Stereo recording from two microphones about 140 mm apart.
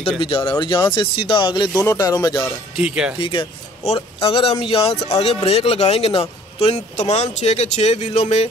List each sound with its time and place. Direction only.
0.2 s a man's voice: 35° left (ahead or behind)
1.7 s speech: 20° left (ahead or behind)
2.8 s speech: 10° right (ahead or behind)
3.2 s a man's voice: 40° left (ahead or behind)